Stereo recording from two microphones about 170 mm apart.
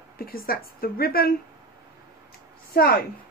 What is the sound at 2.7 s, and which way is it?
Speech, 65° left (ahead or behind).